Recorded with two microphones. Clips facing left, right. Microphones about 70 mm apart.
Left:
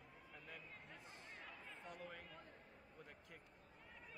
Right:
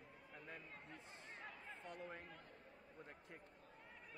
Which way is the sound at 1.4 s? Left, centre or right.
Centre.